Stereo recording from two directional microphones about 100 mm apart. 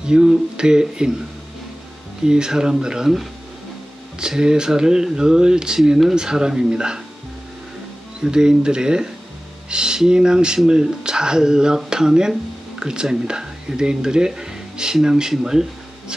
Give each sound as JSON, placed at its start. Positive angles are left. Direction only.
{"t": 0.0, "sound": "speech", "side_deg": -10}
{"t": 2.2, "sound": "speech", "side_deg": -5}
{"t": 8.2, "sound": "speech", "side_deg": -5}